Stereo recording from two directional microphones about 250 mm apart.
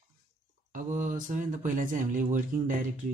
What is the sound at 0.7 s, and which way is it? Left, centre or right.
Speech, right.